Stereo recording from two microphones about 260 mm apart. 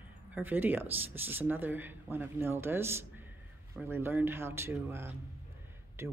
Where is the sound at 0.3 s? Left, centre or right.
Centre.